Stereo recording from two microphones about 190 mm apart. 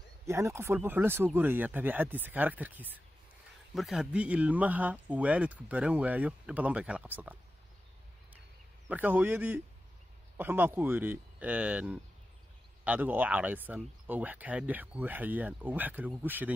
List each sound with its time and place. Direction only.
0.3 s speech: 15° right (ahead or behind)
8.8 s speech: 10° right (ahead or behind)